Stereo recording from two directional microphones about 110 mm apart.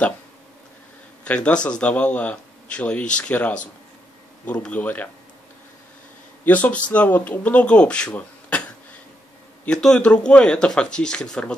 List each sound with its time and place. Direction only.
1.2 s speech: 10° left (ahead or behind)
4.6 s speech: 15° left (ahead or behind)
6.4 s speech: 15° left (ahead or behind)
9.7 s speech: 5° left (ahead or behind)